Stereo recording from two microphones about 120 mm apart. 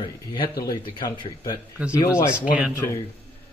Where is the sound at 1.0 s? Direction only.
35° left (ahead or behind).